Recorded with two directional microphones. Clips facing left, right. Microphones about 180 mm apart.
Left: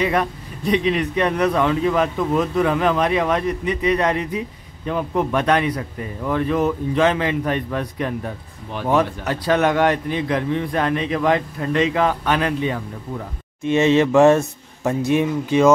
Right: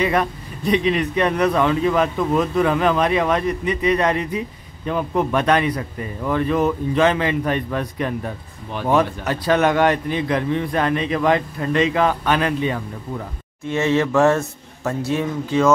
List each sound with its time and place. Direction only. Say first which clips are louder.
0.0 s a man's voice: right 1 dB; 10° left (ahead or behind)